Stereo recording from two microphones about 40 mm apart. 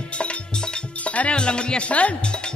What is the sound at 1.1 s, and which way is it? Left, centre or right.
Speech, left.